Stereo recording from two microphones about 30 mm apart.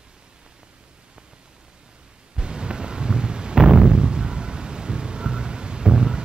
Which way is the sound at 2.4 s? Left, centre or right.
Right.